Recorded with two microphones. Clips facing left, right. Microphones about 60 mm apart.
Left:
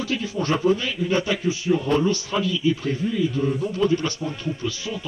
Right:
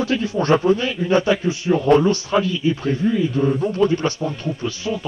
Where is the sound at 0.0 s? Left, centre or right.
Right.